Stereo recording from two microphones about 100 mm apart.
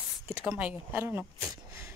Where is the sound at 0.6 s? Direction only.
15° right (ahead or behind).